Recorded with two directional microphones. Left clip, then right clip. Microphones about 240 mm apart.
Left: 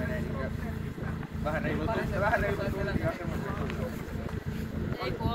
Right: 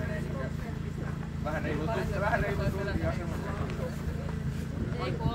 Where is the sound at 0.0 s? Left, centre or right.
Left.